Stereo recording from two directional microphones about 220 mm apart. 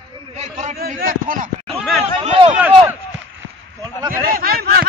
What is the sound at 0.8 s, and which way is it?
Speech, 40° right (ahead or behind).